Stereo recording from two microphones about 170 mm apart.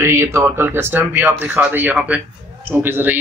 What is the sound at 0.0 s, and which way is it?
A man's voice, 15° right (ahead or behind).